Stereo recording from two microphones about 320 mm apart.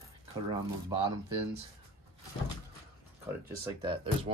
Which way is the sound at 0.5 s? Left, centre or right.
Centre.